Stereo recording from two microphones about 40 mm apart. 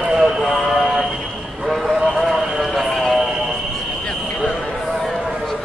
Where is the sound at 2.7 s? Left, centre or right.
Centre.